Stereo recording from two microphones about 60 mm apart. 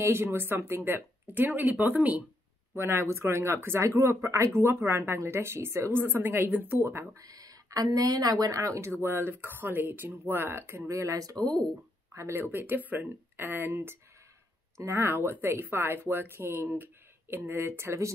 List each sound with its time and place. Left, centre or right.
0.0 s speech: right
2.7 s speech: right
4.6 s speech: right
7.2 s speech: right
9.0 s speech: right
12.1 s speech: right
12.4 s speech: right